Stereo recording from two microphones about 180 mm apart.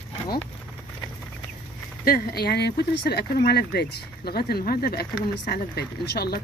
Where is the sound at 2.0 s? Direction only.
55° left (ahead or behind).